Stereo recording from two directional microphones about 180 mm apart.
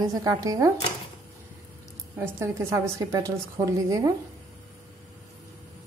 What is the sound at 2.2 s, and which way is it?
A woman's voice, 15° right (ahead or behind).